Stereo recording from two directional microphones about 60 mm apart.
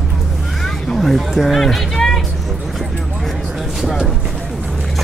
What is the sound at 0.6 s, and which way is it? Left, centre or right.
Speech, centre.